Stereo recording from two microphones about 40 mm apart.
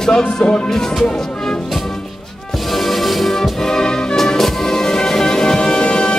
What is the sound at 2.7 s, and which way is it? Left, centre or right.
Music, centre.